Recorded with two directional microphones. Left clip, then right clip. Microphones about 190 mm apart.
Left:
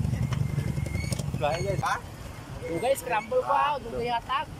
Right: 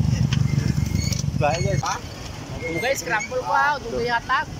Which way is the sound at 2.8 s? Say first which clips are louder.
Right 3 dB; 10° left (ahead or behind).